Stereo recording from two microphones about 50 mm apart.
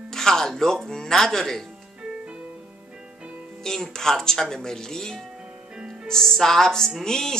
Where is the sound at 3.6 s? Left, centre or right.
Centre.